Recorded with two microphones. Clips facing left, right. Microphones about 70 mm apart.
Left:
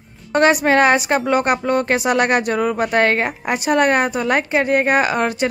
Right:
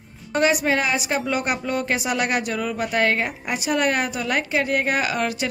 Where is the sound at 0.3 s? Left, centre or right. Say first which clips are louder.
Left 6 dB; left.